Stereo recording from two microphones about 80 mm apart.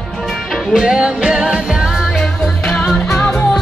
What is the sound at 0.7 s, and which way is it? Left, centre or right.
Music, centre.